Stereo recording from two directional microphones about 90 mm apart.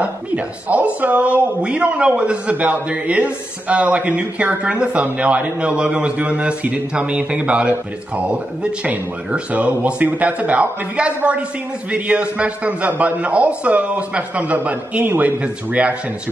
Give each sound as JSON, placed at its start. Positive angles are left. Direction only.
{"t": 0.0, "sound": "speech", "side_deg": -15}
{"t": 8.8, "sound": "speech", "side_deg": -15}